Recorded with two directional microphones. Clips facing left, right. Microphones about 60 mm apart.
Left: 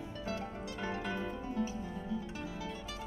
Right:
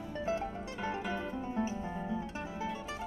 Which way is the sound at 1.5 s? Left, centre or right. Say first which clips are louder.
Right 3 dB; right.